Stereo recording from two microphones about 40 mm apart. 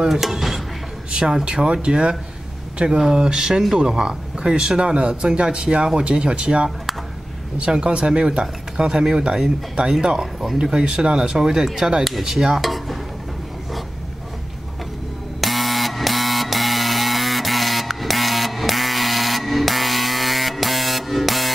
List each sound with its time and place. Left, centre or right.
0.1 s speech: centre
12.0 s dishes: centre
15.4 s printer: centre